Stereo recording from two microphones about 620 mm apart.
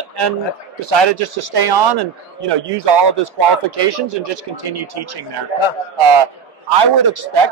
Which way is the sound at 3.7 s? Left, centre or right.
Right.